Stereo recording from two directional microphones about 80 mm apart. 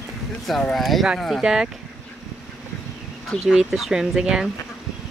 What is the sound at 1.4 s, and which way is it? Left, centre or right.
Speech, centre.